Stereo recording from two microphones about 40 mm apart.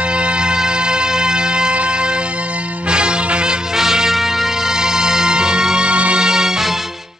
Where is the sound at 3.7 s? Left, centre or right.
Centre.